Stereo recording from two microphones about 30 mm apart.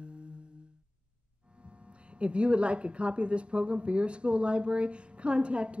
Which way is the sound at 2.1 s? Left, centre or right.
Right.